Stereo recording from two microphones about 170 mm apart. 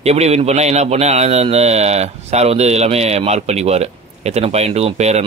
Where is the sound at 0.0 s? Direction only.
40° right (ahead or behind).